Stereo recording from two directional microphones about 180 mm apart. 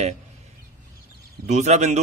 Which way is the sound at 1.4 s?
40° right (ahead or behind).